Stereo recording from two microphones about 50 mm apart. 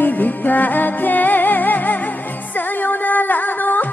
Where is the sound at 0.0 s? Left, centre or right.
Left.